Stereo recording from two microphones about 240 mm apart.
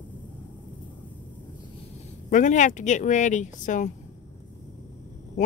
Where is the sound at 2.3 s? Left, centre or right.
Left.